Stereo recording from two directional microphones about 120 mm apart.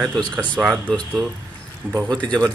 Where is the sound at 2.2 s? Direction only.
10° left (ahead or behind).